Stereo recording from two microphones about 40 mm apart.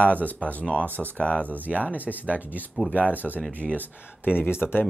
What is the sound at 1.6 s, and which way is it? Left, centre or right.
Speech, right.